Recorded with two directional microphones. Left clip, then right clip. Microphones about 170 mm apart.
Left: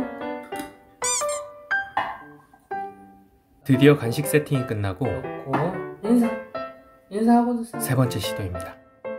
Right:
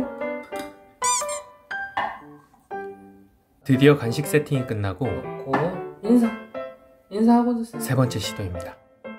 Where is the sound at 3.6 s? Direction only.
Centre (ahead or behind).